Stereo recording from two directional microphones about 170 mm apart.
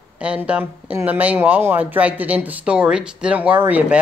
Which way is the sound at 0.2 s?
5° right (ahead or behind).